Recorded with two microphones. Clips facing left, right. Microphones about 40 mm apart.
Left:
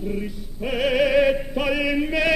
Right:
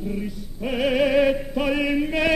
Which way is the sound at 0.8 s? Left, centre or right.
Centre.